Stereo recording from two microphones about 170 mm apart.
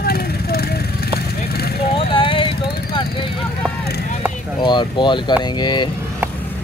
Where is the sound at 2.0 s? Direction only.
30° left (ahead or behind).